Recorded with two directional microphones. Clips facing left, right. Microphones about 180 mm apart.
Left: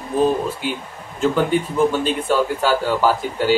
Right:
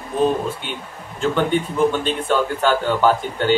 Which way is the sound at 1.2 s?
5° left (ahead or behind).